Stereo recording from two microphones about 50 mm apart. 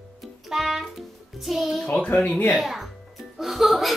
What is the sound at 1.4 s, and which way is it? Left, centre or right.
Speech, centre.